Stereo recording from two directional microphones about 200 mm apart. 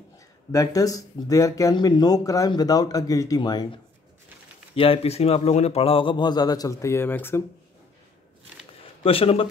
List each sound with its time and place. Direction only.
0.5 s speech: 15° left (ahead or behind)
9.0 s speech: 30° left (ahead or behind)